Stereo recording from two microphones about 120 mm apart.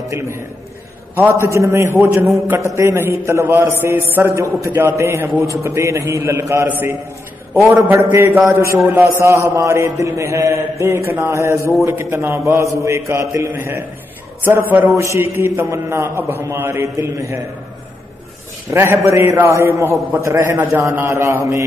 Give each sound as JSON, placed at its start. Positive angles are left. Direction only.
{"t": 1.1, "sound": "a man's voice", "side_deg": -15}
{"t": 18.7, "sound": "a man's voice", "side_deg": -20}